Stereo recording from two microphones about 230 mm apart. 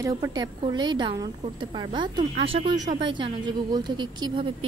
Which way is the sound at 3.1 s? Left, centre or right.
Centre.